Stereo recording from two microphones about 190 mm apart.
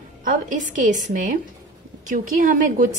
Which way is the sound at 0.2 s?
45° right (ahead or behind).